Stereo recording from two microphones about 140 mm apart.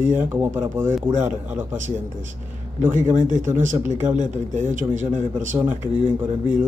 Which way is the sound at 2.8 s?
65° right (ahead or behind).